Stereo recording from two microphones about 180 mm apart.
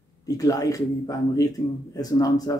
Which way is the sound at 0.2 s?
20° left (ahead or behind).